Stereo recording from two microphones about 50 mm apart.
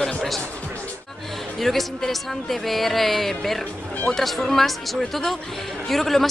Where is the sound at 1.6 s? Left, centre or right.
Centre.